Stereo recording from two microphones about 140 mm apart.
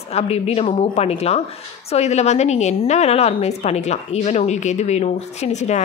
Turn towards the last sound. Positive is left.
turn(degrees=55)  # may be behind; listen again after turning